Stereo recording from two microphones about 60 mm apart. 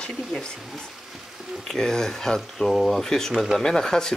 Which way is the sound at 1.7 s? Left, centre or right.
Centre.